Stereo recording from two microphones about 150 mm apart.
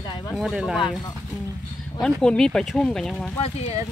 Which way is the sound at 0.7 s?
30° left (ahead or behind).